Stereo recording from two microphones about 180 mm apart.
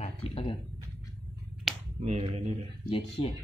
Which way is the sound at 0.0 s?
35° left (ahead or behind).